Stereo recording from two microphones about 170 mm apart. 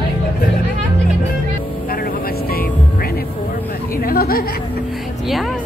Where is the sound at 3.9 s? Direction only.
60° left (ahead or behind).